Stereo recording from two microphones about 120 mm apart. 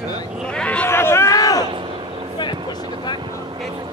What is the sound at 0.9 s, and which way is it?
Speech, 20° left (ahead or behind).